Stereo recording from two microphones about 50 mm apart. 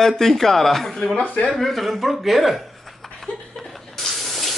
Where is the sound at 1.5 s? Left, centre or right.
Centre.